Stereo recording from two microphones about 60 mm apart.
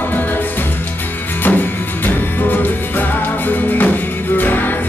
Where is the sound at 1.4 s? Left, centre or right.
Left.